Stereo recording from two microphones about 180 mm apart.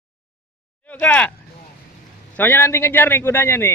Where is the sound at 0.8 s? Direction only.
10° left (ahead or behind).